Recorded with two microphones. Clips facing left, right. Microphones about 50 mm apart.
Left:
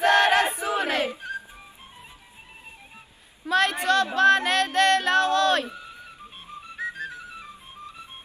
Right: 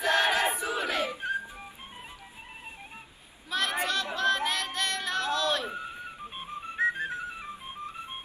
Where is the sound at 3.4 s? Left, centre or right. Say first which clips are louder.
Left 7 dB; left.